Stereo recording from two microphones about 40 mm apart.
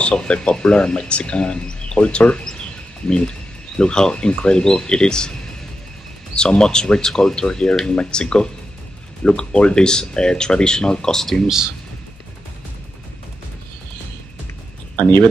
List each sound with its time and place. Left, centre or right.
0.0 s speech: left
6.3 s speech: centre
11.4 s speech: centre